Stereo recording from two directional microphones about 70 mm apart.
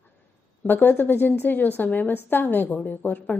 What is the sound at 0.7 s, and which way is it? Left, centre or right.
A woman's voice, left.